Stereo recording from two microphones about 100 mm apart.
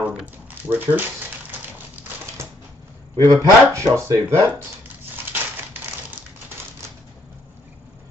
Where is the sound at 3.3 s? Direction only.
35° right (ahead or behind).